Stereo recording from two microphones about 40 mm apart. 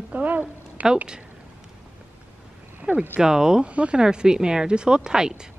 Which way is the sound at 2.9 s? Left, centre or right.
Right.